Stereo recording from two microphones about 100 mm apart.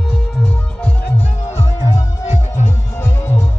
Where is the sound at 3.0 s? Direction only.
25° left (ahead or behind).